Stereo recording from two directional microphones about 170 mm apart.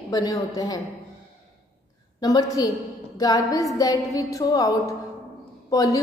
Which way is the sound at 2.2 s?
20° left (ahead or behind).